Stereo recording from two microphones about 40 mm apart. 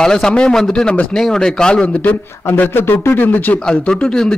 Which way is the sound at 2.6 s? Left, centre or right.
Left.